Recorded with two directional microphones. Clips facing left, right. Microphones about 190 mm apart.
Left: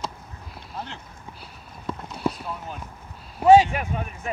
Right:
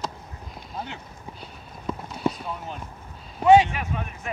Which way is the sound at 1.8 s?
Centre (ahead or behind).